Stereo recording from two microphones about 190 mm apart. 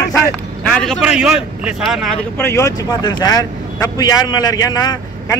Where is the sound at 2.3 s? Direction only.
15° left (ahead or behind).